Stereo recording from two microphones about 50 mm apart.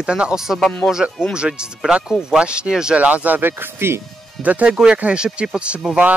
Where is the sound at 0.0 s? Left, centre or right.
Centre.